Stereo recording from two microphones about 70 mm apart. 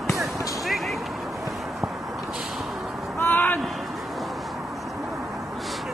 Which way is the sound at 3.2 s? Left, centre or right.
Left.